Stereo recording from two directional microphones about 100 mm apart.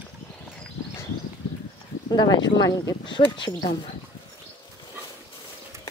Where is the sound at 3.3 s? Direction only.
55° left (ahead or behind).